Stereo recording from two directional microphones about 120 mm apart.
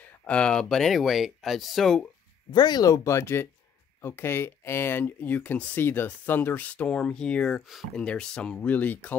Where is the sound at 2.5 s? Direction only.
35° left (ahead or behind).